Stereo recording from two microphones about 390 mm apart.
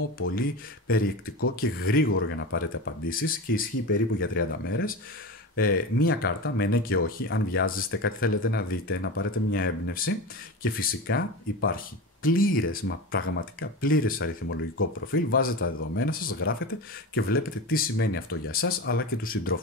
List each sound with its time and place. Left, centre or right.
0.2 s speech: left